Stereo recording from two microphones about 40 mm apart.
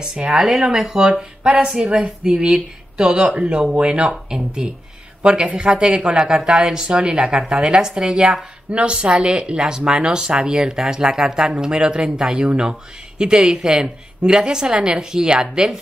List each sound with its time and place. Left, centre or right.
0.0 s speech: centre
4.0 s speech: centre